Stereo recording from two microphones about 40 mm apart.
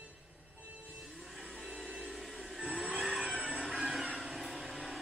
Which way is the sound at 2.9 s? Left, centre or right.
Centre.